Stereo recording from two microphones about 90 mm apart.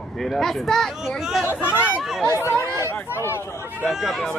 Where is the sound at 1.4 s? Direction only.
25° left (ahead or behind).